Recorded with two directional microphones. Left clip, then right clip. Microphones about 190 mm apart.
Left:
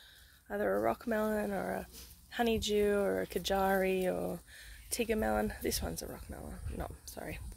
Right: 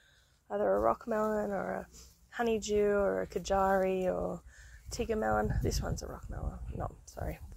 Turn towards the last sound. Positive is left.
turn(degrees=45)  # may be behind; listen again after turning